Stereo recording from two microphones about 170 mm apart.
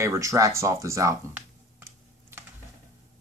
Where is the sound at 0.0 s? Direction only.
15° right (ahead or behind).